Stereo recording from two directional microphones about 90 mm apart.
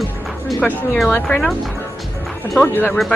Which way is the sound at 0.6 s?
20° left (ahead or behind).